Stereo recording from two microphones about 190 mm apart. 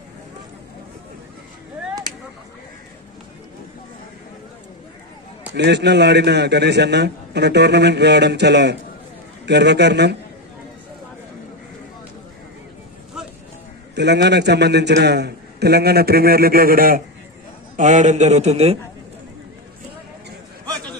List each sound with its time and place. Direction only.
5.5 s a man's voice: 65° right (ahead or behind)
13.9 s a man's voice: 65° right (ahead or behind)
17.7 s a man's voice: 40° right (ahead or behind)